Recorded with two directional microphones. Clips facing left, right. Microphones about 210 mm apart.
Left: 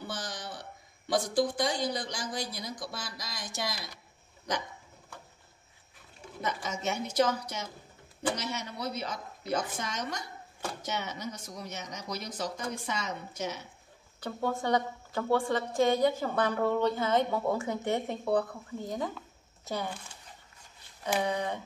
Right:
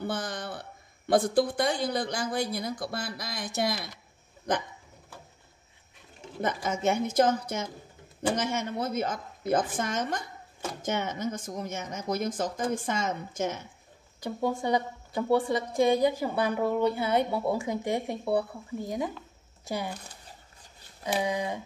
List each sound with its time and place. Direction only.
0.0 s a woman's voice: 55° right (ahead or behind)
6.4 s speech: 50° right (ahead or behind)
14.2 s a woman's voice: 15° right (ahead or behind)
19.9 s speech: 40° right (ahead or behind)
21.0 s a woman's voice: 10° right (ahead or behind)